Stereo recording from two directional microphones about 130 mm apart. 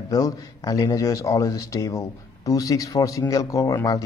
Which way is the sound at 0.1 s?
30° left (ahead or behind).